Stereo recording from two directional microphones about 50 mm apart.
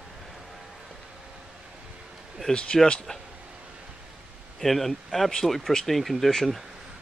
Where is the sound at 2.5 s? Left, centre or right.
Centre.